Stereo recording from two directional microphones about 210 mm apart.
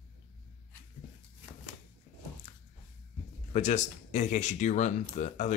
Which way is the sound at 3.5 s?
35° left (ahead or behind).